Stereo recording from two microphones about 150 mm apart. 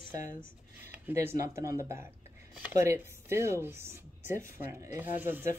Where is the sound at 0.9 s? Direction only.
15° right (ahead or behind).